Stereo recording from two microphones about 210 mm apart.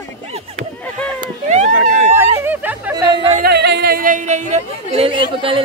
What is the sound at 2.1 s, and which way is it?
Chatter, 10° right (ahead or behind).